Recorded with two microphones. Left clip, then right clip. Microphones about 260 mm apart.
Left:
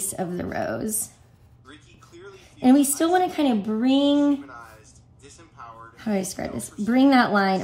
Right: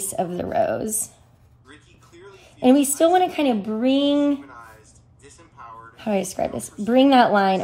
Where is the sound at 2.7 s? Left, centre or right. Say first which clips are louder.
Right 3 dB; centre.